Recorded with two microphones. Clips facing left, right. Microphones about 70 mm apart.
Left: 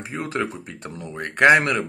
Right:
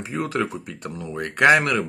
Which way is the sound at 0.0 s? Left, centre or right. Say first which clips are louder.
Right 2 dB; left.